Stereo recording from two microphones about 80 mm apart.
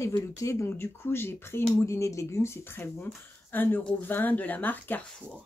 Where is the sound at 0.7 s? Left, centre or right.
Left.